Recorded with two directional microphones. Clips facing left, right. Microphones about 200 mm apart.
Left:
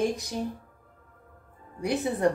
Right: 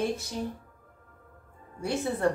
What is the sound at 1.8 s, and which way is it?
Speech, 15° left (ahead or behind).